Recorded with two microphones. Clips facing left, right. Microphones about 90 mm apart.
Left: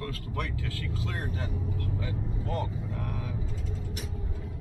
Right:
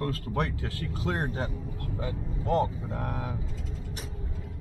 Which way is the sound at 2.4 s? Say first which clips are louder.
Right 9 dB; 35° right (ahead or behind).